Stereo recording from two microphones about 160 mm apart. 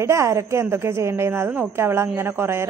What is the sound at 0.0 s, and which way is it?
Speech, 15° right (ahead or behind).